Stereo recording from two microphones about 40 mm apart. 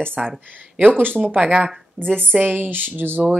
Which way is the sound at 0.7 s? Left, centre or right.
Right.